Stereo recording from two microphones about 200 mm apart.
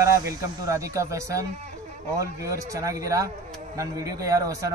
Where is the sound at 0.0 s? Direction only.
15° right (ahead or behind).